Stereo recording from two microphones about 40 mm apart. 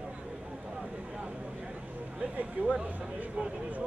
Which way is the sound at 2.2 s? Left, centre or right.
Right.